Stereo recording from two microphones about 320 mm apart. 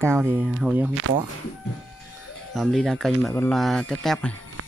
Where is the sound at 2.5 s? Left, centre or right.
Centre.